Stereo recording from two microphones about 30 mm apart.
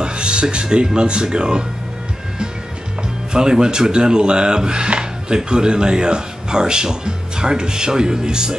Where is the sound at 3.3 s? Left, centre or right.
Right.